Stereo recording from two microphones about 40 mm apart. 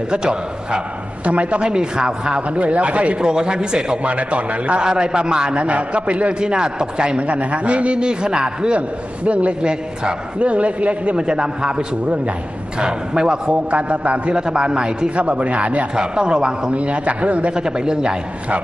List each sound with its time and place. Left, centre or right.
0.1 s a man's voice: right
1.2 s a man's voice: right
2.5 s a man's voice: right
3.2 s a man's voice: right
4.8 s a man's voice: right
5.6 s a man's voice: right
7.2 s a man's voice: right
8.7 s a man's voice: right
11.1 s a man's voice: right
15.9 s a man's voice: right
16.7 s a man's voice: right
17.6 s a man's voice: right